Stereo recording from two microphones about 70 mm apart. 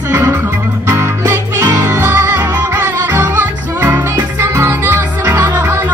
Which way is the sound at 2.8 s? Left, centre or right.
Right.